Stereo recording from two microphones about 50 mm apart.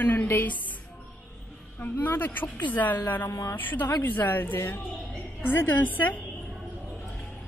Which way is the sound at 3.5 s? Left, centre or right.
Left.